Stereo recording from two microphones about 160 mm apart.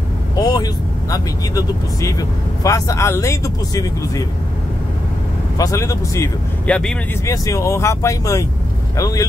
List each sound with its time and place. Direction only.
0.4 s vehicle: 25° left (ahead or behind)
1.1 s speech: 20° left (ahead or behind)
5.6 s speech: 20° left (ahead or behind)
6.7 s speech: 5° left (ahead or behind)
7.2 s speech: 20° left (ahead or behind)